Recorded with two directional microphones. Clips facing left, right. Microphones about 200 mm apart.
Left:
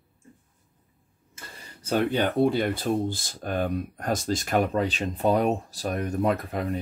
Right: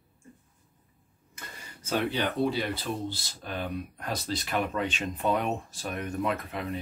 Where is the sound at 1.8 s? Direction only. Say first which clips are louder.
Left 5 dB; 40° left (ahead or behind).